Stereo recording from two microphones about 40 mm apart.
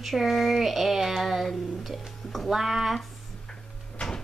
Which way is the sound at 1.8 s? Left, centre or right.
Centre.